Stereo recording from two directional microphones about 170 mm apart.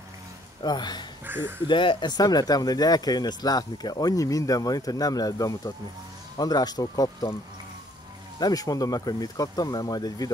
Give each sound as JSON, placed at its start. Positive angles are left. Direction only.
{"t": 0.6, "sound": "speech", "side_deg": 25}
{"t": 1.2, "sound": "speech", "side_deg": -10}
{"t": 1.7, "sound": "speech", "side_deg": 30}
{"t": 8.4, "sound": "speech", "side_deg": 20}